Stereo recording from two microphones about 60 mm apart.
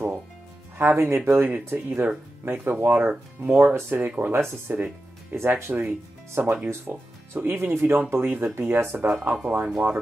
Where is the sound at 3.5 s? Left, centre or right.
Right.